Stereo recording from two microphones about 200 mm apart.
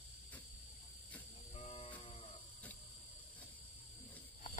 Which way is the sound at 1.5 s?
30° left (ahead or behind).